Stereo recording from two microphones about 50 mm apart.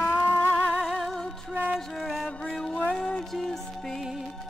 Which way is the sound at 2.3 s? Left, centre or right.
Centre.